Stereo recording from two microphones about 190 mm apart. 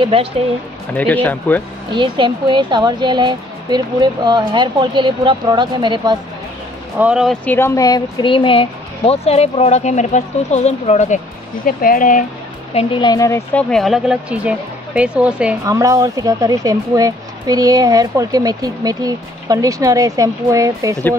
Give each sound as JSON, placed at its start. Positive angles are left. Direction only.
{"t": 0.0, "sound": "speech", "side_deg": -30}
{"t": 0.9, "sound": "speech", "side_deg": 10}
{"t": 1.9, "sound": "speech", "side_deg": -25}
{"t": 7.0, "sound": "speech", "side_deg": -5}
{"t": 7.4, "sound": "speech", "side_deg": 10}
{"t": 11.6, "sound": "speech", "side_deg": 50}
{"t": 12.7, "sound": "speech", "side_deg": 25}
{"t": 15.6, "sound": "speech", "side_deg": -15}